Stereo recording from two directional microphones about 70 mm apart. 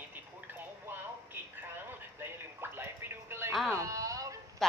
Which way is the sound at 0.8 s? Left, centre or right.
Right.